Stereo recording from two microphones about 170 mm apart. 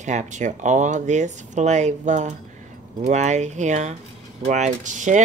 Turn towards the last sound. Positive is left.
turn(degrees=-45)  # may be behind; listen again after turning